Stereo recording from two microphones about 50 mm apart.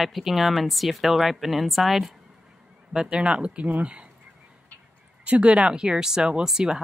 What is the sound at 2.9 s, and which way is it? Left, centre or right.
Speech, centre.